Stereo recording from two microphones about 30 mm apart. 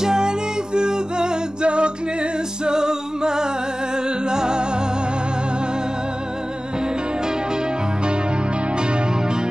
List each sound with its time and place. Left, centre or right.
0.0 s music: right
2.6 s a capella: right
4.3 s music: right